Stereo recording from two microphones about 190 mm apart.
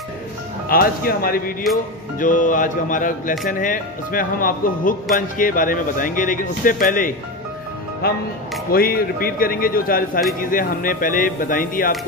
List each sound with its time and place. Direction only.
0.7 s speech: 50° left (ahead or behind)